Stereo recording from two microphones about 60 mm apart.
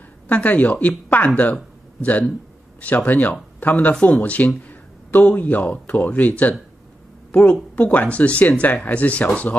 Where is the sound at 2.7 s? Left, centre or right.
Left.